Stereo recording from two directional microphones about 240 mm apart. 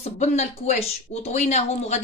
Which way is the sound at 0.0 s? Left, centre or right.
Left.